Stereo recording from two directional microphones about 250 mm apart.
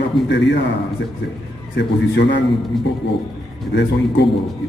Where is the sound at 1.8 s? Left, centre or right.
Left.